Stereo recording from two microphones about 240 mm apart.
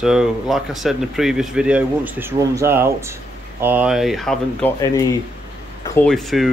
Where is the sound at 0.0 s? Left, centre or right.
Centre.